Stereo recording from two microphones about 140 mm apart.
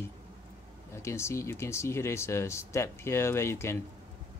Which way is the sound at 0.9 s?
20° left (ahead or behind).